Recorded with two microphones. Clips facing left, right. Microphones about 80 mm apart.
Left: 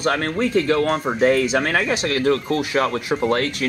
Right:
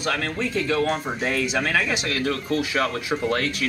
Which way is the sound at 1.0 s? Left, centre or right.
Left.